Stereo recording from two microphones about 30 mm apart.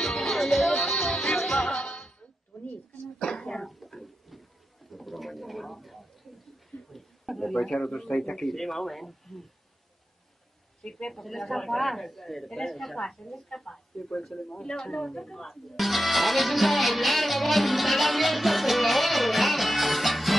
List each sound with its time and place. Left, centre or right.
0.0 s music: centre
3.2 s throat clearing: left
3.6 s a sound: centre
7.7 s speech: centre
8.5 s speech: centre
10.8 s speech: centre
11.1 s speech: centre
15.4 s speech: centre